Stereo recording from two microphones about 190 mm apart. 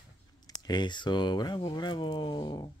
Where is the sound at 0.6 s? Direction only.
20° left (ahead or behind).